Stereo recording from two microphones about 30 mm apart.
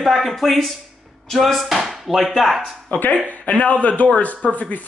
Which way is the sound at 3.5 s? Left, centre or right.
Left.